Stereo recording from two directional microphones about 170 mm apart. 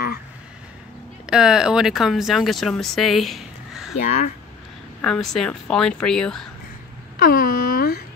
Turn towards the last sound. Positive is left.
turn(degrees=55)  # may be behind; listen again after turning